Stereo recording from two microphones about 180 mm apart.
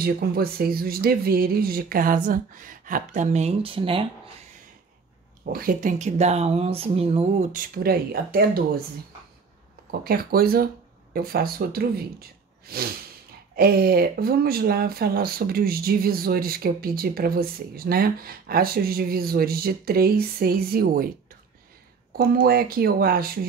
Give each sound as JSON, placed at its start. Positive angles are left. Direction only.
{"t": 0.0, "sound": "speech", "side_deg": -55}
{"t": 5.4, "sound": "speech", "side_deg": -50}
{"t": 7.5, "sound": "speech", "side_deg": -50}
{"t": 9.8, "sound": "speech", "side_deg": -55}
{"t": 22.1, "sound": "speech", "side_deg": -55}